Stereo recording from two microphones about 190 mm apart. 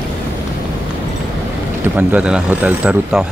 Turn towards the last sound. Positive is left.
turn(degrees=-5)  # may be behind; listen again after turning